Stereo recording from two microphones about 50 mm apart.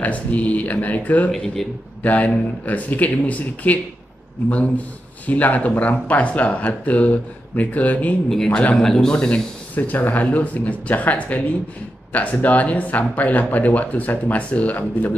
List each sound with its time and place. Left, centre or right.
0.0 s a man's voice: left
1.3 s a man's voice: centre
2.0 s a man's voice: left
8.7 s a man's voice: centre
9.8 s a man's voice: left